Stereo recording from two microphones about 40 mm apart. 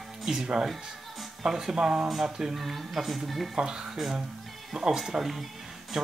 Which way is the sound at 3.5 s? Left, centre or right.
Centre.